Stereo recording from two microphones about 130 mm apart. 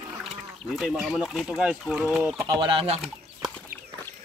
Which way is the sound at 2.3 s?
25° right (ahead or behind).